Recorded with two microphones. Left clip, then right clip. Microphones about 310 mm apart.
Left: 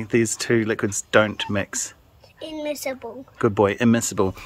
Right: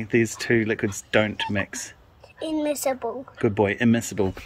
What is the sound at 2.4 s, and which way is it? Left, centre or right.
Speech, centre.